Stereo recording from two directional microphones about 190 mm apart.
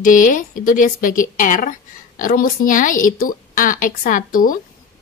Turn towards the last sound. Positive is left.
turn(degrees=45)  # may be behind; listen again after turning